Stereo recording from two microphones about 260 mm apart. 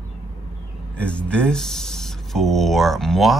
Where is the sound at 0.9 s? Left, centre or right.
Centre.